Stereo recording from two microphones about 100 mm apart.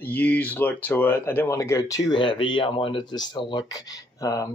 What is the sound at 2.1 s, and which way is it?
Speech, 55° left (ahead or behind).